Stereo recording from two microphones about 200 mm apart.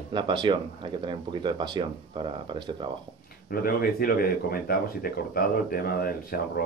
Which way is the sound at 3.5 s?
50° left (ahead or behind).